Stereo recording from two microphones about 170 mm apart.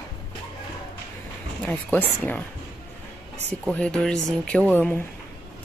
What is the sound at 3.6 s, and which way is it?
Speech, 5° left (ahead or behind).